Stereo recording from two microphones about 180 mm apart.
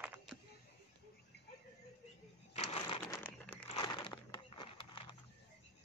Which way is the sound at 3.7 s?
25° left (ahead or behind).